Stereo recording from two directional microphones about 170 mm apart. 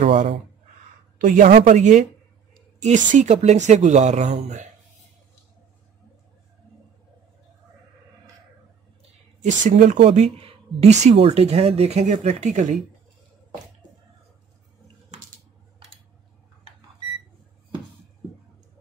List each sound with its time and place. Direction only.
1.1 s speech: 50° right (ahead or behind)
9.4 s speech: 45° right (ahead or behind)
10.0 s a woman's voice: 35° right (ahead or behind)